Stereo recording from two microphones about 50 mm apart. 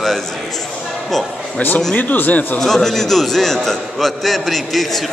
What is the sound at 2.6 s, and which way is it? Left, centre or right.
A man's voice, centre.